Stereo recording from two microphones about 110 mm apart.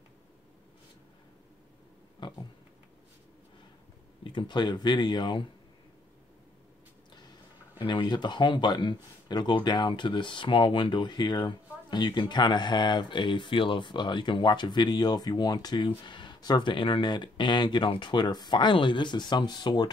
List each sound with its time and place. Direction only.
2.2 s a sound: 45° left (ahead or behind)
4.2 s speech: 45° left (ahead or behind)
7.8 s speech: 45° left (ahead or behind)